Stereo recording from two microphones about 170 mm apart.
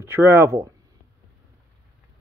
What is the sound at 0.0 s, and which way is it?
Speech, 15° right (ahead or behind).